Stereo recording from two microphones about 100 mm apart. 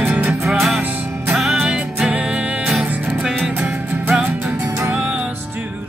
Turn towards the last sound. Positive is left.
turn(degrees=-15)  # may be behind; listen again after turning